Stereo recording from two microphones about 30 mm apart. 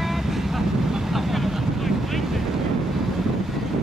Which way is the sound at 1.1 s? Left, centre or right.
Centre.